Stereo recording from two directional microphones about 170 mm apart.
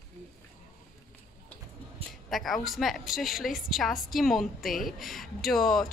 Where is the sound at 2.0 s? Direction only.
35° right (ahead or behind).